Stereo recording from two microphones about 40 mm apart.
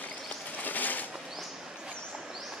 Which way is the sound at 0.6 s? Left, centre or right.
Left.